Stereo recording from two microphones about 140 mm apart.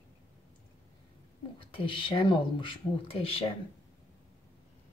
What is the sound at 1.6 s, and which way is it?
Speech, 40° left (ahead or behind).